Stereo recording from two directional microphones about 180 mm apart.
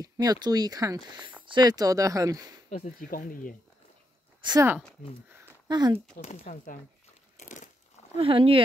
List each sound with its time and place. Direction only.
0.0 s speech: 20° right (ahead or behind)
2.7 s speech: 50° left (ahead or behind)
4.4 s speech: 25° right (ahead or behind)
5.7 s speech: 25° right (ahead or behind)
6.5 s speech: 45° left (ahead or behind)
7.3 s a sound: 45° left (ahead or behind)
8.2 s speech: 30° right (ahead or behind)